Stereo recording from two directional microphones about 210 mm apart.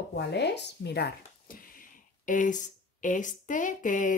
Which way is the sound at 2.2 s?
40° left (ahead or behind).